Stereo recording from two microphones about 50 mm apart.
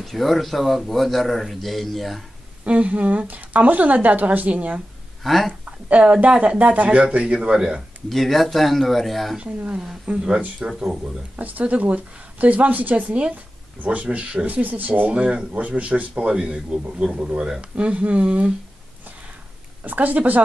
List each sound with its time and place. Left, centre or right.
0.0 s a man's voice: centre
2.6 s a woman's voice: right
5.2 s speech: centre
5.5 s a man's voice: right; by 7.8 s centre
8.1 s a man's voice: centre
9.4 s a man's voice: right
10.6 s speech: centre
11.3 s a woman's voice: right
14.5 s a woman's voice: right
15.1 s a man's voice: right
19.8 s a woman's voice: right